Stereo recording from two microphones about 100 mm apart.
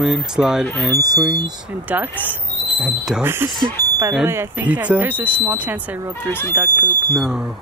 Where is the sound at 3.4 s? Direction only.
45° right (ahead or behind).